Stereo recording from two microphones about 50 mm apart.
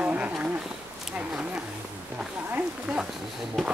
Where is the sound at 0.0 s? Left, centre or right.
Right.